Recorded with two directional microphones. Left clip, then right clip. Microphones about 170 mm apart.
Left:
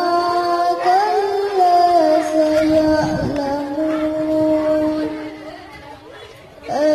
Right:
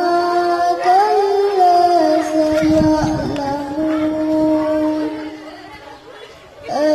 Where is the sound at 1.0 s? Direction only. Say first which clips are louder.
Right 3 dB; centre (ahead or behind).